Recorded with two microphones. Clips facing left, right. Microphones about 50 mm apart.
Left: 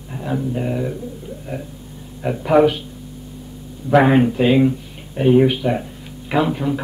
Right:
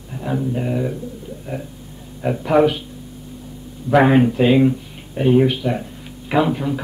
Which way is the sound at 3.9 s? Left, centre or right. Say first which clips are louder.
Even; centre.